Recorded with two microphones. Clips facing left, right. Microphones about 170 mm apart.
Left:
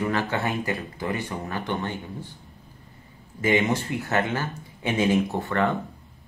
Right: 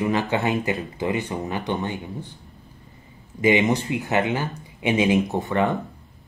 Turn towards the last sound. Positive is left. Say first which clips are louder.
# right 2 dB
turn(degrees=-20)  # may be behind; listen again after turning